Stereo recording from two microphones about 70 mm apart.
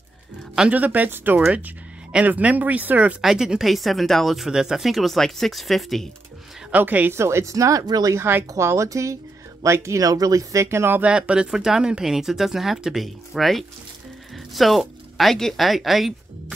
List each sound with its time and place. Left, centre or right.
0.6 s speech: right
3.2 s speech: centre
6.7 s speech: right
7.2 s speech: right
7.8 s speech: right
8.1 s speech: right
11.0 s speech: centre